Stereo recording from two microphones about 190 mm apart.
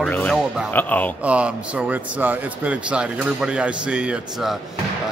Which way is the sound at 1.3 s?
5° right (ahead or behind).